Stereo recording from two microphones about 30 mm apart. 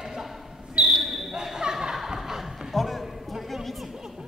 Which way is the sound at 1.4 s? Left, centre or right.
Centre.